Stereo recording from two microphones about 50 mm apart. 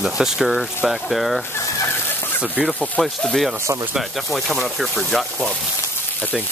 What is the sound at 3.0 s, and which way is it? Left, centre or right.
Speech, centre.